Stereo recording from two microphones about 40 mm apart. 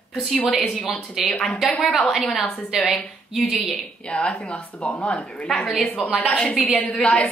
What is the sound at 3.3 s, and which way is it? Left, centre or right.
Speech, centre.